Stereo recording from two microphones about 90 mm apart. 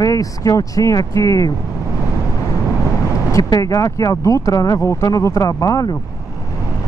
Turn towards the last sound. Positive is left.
turn(degrees=40)  # may be behind; listen again after turning